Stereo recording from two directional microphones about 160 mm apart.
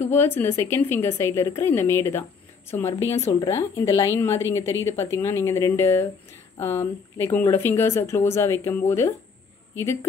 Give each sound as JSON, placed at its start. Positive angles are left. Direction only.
{"t": 0.0, "sound": "a woman's voice", "side_deg": 15}